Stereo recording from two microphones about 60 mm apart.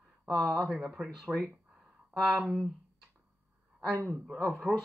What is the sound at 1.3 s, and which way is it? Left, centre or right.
Speech, right.